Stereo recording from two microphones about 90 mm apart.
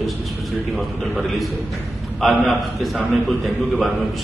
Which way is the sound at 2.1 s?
Centre (ahead or behind).